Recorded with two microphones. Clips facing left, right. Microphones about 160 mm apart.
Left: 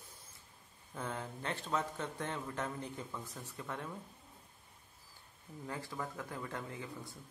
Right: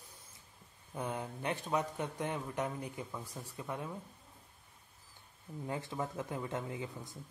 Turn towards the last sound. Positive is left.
turn(degrees=-20)  # may be behind; listen again after turning